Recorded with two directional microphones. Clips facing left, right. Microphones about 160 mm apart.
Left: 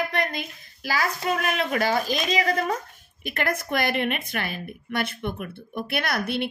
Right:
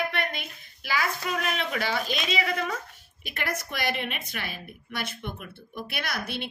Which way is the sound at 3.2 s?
50° left (ahead or behind).